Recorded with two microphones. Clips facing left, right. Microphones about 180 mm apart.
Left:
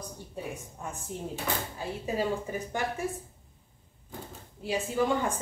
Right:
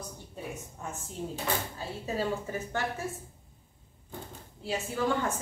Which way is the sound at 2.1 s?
15° left (ahead or behind).